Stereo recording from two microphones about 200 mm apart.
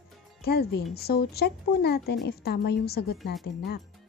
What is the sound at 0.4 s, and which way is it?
Speech, 50° left (ahead or behind).